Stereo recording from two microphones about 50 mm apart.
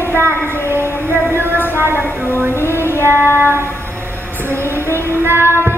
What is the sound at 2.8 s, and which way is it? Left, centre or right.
Music, left.